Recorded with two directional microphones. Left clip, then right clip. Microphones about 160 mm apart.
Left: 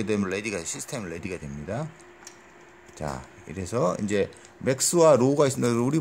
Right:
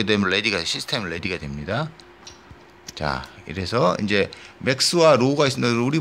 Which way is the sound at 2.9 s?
15° left (ahead or behind).